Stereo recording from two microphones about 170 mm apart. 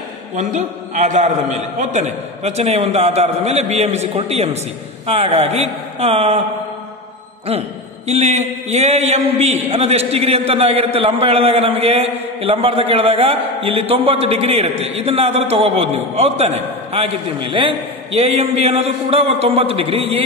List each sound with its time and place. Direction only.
0.4 s a man's voice: 45° right (ahead or behind)
8.1 s a man's voice: 40° right (ahead or behind)